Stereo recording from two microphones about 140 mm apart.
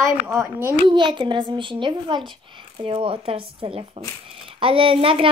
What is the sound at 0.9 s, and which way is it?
Speech, 35° right (ahead or behind).